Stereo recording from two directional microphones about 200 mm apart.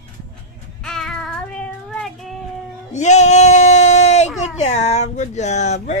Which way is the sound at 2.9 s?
35° left (ahead or behind).